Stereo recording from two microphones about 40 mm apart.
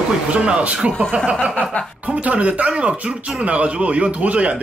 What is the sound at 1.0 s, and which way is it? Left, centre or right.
A man's voice, right.